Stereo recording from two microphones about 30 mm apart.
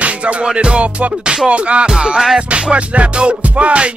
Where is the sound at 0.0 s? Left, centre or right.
Right.